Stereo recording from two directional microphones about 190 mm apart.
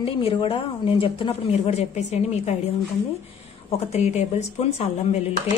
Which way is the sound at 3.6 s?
35° left (ahead or behind).